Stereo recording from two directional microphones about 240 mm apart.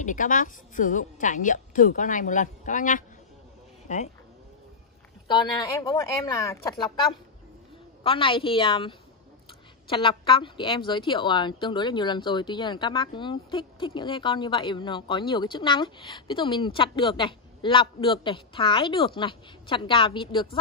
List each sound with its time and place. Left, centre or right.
0.0 s a woman's voice: left
5.3 s speech: centre
8.0 s a woman's voice: left